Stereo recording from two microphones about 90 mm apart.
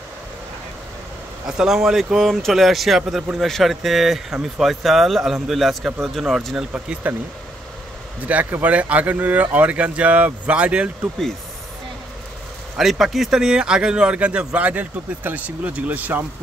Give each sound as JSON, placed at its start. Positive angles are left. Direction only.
{"t": 1.6, "sound": "a man's voice", "side_deg": -5}
{"t": 6.7, "sound": "a man's voice", "side_deg": -15}
{"t": 8.3, "sound": "a man's voice", "side_deg": -20}
{"t": 12.7, "sound": "a man's voice", "side_deg": -5}